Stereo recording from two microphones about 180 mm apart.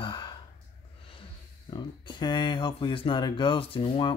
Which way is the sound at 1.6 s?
25° left (ahead or behind).